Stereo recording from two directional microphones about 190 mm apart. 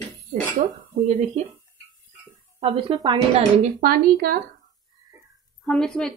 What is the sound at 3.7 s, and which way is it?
Speech, 50° right (ahead or behind).